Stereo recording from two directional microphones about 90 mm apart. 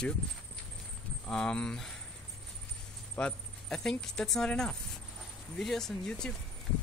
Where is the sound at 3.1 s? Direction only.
10° left (ahead or behind).